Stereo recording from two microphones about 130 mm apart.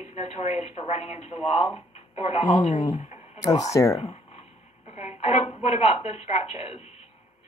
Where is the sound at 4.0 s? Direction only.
50° left (ahead or behind).